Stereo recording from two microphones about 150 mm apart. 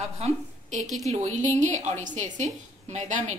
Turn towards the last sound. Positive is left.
turn(degrees=-50)  # may be behind; listen again after turning